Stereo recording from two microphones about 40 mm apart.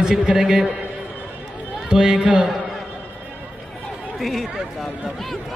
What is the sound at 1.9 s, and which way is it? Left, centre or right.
Speech, centre.